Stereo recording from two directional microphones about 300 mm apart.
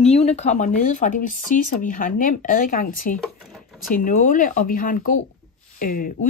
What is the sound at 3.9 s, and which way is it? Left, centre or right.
Speech, left.